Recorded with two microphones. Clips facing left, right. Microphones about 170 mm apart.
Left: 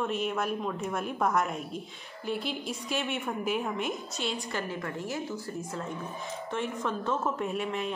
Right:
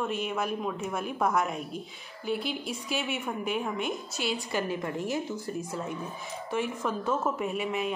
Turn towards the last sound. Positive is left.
turn(degrees=-5)  # may be behind; listen again after turning